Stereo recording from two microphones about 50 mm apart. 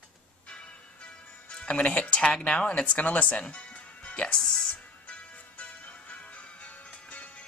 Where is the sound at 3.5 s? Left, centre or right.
Left.